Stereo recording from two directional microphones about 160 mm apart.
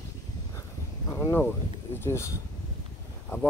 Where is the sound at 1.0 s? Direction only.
20° left (ahead or behind).